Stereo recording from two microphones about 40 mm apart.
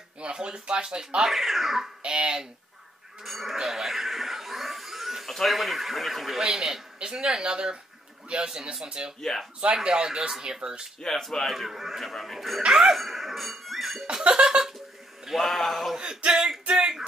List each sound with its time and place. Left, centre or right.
0.2 s speech: right
1.3 s speech: centre
2.0 s speech: right
3.3 s speech: centre
3.5 s a sound: centre
5.2 s speech: centre
11.0 s speech: centre
12.6 s speech: centre
12.9 s music: centre
14.0 s a sound: right
15.4 s speech: centre
16.0 s speech: right